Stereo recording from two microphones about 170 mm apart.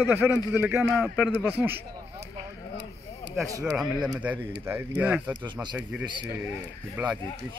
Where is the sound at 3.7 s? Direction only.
Centre (ahead or behind).